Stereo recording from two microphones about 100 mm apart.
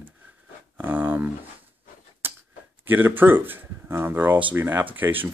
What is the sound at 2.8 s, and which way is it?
Speech, 20° right (ahead or behind).